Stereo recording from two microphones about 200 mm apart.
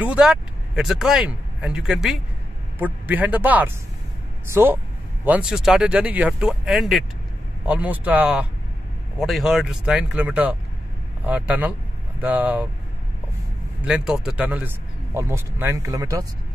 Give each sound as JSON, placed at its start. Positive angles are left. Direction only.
{"t": 0.0, "sound": "speech", "side_deg": -5}
{"t": 13.8, "sound": "speech", "side_deg": -5}